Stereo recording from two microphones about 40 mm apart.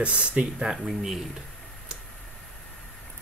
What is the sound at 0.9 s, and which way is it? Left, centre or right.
Speech, centre.